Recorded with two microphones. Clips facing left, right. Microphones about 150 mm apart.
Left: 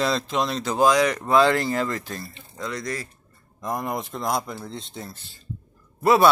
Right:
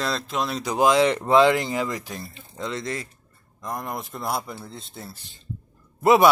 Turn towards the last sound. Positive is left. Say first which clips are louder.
# right 1 dB
turn(degrees=-20)  # may be behind; listen again after turning